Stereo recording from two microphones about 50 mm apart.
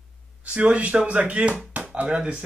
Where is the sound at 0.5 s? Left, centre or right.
Right.